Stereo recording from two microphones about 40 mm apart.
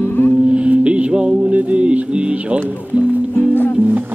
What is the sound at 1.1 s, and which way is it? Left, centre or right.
Music, centre.